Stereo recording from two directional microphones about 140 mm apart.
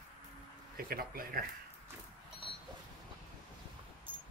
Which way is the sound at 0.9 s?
90° right.